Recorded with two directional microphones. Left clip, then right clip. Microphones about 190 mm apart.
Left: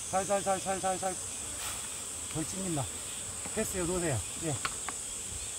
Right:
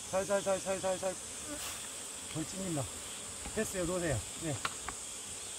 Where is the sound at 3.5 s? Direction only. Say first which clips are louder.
Left 1 dB; 10° right (ahead or behind).